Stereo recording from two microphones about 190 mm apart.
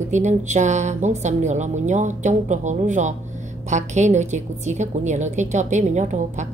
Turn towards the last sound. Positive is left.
turn(degrees=-40)  # may be behind; listen again after turning